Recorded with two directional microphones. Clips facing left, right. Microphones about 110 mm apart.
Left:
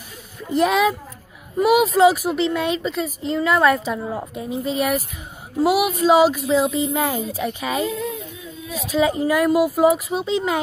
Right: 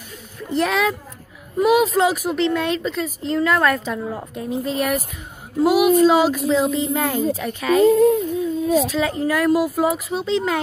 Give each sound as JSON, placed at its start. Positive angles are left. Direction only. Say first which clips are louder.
{"t": 0.6, "sound": "speech", "louder": "left 2 dB", "side_deg": 10}
{"t": 7.8, "sound": "child singing", "louder": "right 12 dB", "side_deg": -45}
{"t": 8.8, "sound": "speech", "louder": "left 2 dB", "side_deg": 15}